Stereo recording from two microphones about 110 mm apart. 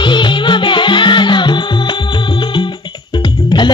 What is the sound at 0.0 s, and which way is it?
Music, 45° left (ahead or behind).